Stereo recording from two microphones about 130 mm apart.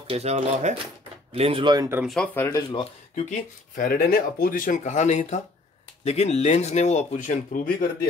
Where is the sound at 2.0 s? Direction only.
5° left (ahead or behind).